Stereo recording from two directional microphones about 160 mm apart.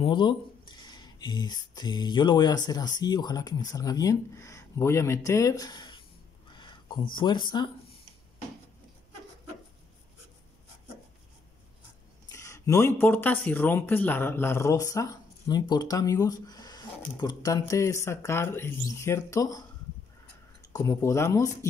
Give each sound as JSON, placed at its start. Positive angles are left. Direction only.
{"t": 0.0, "sound": "speech", "side_deg": 30}
{"t": 12.3, "sound": "speech", "side_deg": 20}
{"t": 20.7, "sound": "speech", "side_deg": 20}